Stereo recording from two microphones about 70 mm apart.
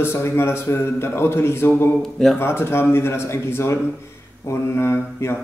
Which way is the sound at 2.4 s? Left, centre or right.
Left.